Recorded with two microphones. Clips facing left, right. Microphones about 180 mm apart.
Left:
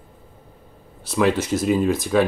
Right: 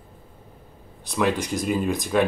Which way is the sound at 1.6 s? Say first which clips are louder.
Left 5 dB; 5° left (ahead or behind).